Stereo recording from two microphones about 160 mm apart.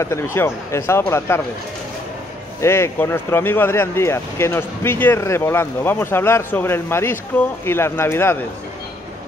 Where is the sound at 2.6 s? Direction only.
15° left (ahead or behind).